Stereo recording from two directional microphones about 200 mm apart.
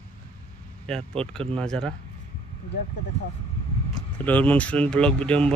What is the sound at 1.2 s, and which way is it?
Speech, 30° right (ahead or behind).